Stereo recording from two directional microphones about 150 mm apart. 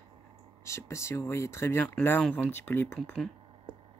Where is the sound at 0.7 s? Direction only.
20° left (ahead or behind).